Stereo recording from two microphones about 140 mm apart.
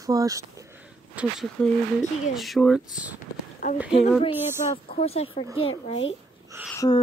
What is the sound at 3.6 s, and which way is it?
Speech, 60° left (ahead or behind).